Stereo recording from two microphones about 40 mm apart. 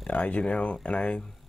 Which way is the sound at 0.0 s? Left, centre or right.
Left.